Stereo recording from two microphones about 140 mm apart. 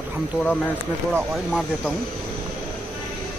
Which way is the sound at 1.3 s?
Centre (ahead or behind).